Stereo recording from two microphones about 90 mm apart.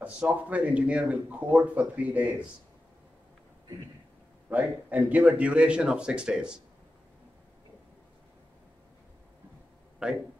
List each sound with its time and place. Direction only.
0.0 s speech: 15° right (ahead or behind)
4.5 s speech: 15° right (ahead or behind)